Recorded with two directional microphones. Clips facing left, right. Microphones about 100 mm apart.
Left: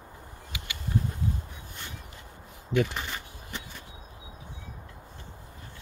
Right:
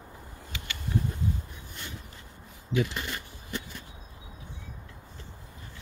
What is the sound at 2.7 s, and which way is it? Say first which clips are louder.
Speech: left 2 dB; 55° left (ahead or behind).